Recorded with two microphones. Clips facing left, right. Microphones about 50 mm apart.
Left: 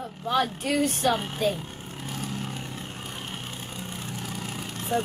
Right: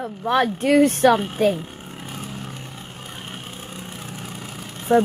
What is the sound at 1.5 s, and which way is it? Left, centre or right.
Vehicle, centre.